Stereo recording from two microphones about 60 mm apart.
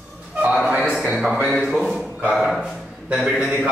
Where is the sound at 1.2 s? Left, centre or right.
Centre.